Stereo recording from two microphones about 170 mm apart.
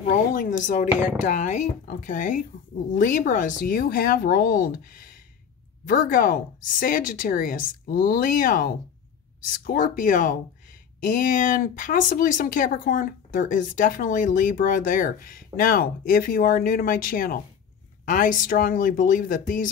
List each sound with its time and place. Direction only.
0.0 s a woman's voice: 50° left (ahead or behind)
5.9 s a woman's voice: 55° left (ahead or behind)